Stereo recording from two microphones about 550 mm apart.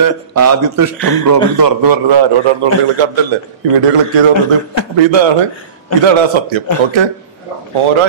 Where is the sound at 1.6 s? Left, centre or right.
Right.